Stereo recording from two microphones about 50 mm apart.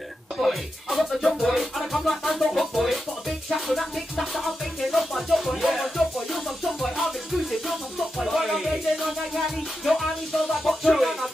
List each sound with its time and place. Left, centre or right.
0.4 s music: centre
8.2 s music: centre